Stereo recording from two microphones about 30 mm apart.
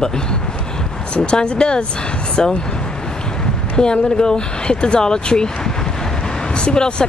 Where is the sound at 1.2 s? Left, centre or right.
Left.